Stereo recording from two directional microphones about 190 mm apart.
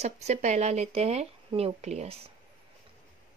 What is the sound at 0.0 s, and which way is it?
Speech, 35° right (ahead or behind).